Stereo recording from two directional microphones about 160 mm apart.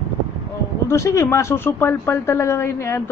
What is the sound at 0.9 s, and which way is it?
Speech, 20° left (ahead or behind).